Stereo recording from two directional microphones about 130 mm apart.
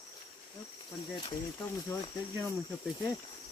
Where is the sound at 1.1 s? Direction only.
40° left (ahead or behind).